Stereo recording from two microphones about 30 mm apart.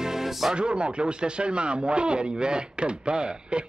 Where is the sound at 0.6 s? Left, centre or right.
Right.